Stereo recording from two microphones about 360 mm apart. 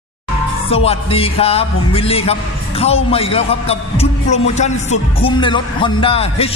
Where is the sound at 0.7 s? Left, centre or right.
Centre.